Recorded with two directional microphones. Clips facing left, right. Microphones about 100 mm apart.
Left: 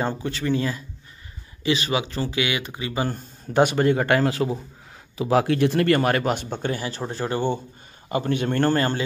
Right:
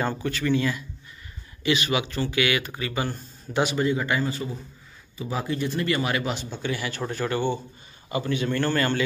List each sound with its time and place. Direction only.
0.2 s speech: 30° left (ahead or behind)
3.1 s a man's voice: 50° left (ahead or behind)
6.8 s speech: 30° left (ahead or behind)
8.1 s a man's voice: 50° left (ahead or behind)
8.7 s speech: 30° left (ahead or behind)